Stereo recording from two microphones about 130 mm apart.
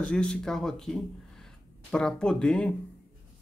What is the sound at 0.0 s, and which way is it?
Speech, 5° left (ahead or behind).